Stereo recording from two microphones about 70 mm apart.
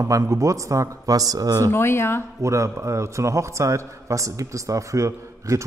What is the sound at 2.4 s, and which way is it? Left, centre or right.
A man's voice, right.